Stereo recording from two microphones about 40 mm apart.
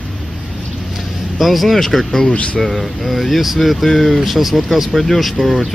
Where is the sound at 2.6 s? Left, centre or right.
Centre.